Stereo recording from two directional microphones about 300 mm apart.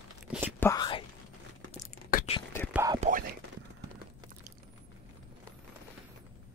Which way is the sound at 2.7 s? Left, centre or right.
Centre.